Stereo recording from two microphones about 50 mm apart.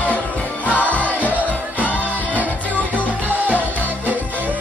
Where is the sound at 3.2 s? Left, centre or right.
Right.